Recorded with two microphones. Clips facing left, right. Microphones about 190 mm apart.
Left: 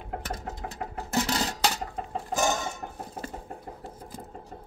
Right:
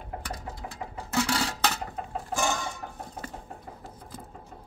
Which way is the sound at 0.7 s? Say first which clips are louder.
Even; 40° left (ahead or behind).